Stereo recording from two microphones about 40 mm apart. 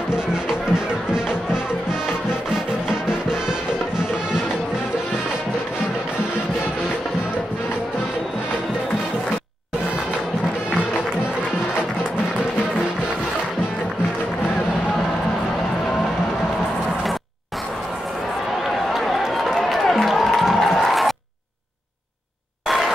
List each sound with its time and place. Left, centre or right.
0.1 s music: centre
2.9 s music: centre
18.9 s run: centre